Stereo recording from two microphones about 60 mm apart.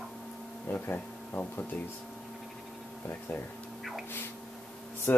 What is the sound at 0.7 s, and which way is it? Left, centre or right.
Speech, left.